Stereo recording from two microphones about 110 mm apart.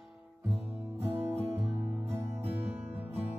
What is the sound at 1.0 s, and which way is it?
Music, 20° right (ahead or behind).